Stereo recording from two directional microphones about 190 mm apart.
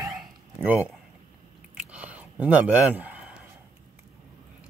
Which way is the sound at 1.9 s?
5° right (ahead or behind).